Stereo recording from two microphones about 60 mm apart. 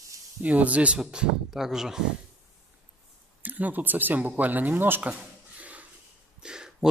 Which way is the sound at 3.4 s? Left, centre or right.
Right.